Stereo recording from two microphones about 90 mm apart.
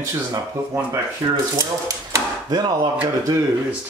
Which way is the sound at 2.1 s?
45° right (ahead or behind).